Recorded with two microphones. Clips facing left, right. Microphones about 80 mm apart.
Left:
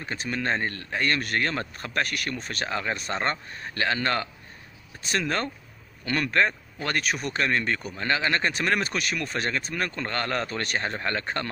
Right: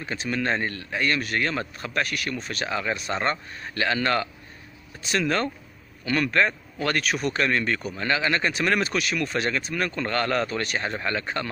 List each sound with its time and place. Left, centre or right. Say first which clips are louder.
0.3 s speech: right 2 dB; left